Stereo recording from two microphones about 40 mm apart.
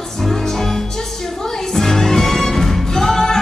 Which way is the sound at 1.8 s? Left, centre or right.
Centre.